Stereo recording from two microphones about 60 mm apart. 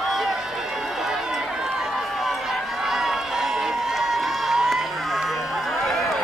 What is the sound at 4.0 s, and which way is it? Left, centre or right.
Crowd, centre.